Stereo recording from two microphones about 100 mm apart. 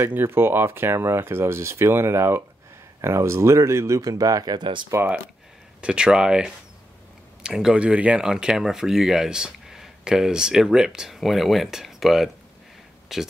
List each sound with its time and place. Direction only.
0.0 s speech: 20° right (ahead or behind); by 4.8 s 50° right (ahead or behind)
4.9 s speech: 20° right (ahead or behind); by 13.2 s 5° right (ahead or behind)